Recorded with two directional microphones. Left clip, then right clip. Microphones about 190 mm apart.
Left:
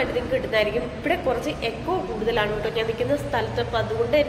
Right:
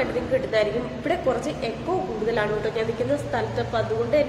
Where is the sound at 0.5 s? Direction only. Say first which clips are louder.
Even; 15° right (ahead or behind).